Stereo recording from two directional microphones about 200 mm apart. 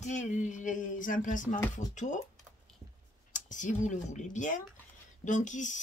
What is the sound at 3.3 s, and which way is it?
Speech, 40° left (ahead or behind).